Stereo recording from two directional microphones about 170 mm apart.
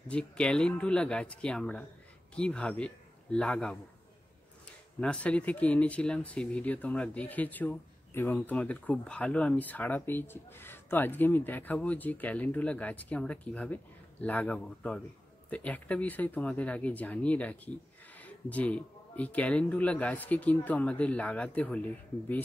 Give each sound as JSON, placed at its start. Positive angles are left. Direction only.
{"t": 0.1, "sound": "a man's voice", "side_deg": 5}
{"t": 5.0, "sound": "speech", "side_deg": 5}